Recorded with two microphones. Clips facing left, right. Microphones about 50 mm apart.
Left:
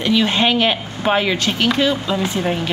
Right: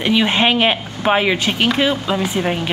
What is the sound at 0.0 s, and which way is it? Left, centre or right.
Speech, right.